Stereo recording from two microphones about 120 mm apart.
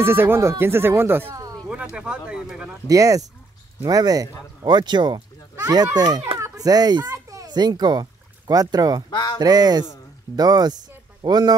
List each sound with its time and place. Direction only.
0.0 s speech: 20° right (ahead or behind)
1.7 s speech: 10° right (ahead or behind)
2.9 s speech: 30° right (ahead or behind)
9.1 s speech: 40° left (ahead or behind)
9.4 s speech: 35° right (ahead or behind)